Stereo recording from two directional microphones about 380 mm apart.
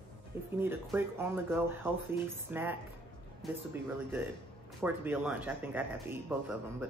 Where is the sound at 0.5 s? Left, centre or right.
Centre.